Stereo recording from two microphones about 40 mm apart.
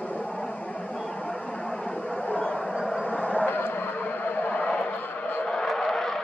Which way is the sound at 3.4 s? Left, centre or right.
Left.